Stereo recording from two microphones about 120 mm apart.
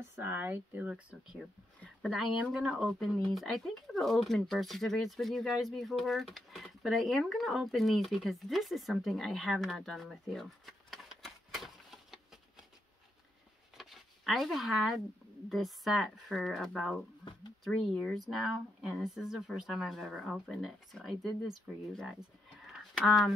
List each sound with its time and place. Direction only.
0.1 s speech: 20° right (ahead or behind); by 12.2 s centre (ahead or behind)
13.7 s zipper: centre (ahead or behind)
15.5 s speech: centre (ahead or behind)
22.7 s a sound: centre (ahead or behind)